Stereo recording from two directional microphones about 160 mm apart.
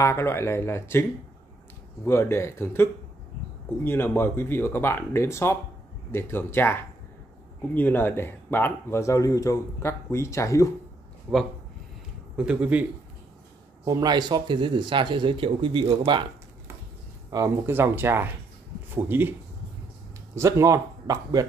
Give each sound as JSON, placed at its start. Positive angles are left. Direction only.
{"t": 0.0, "sound": "speech", "side_deg": 15}
{"t": 2.0, "sound": "speech", "side_deg": 15}
{"t": 12.4, "sound": "speech", "side_deg": -10}
{"t": 13.8, "sound": "speech", "side_deg": -25}
{"t": 17.3, "sound": "speech", "side_deg": -15}
{"t": 20.3, "sound": "speech", "side_deg": -20}